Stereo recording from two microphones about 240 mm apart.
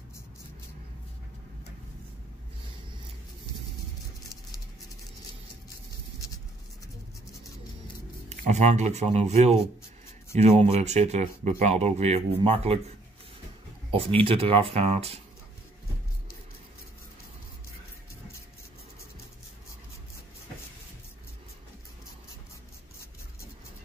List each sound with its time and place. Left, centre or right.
8.3 s speech: right